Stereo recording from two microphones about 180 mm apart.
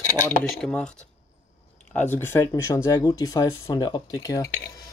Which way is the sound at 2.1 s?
15° left (ahead or behind).